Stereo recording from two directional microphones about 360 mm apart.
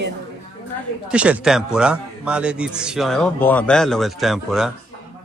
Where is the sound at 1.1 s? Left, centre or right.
Centre.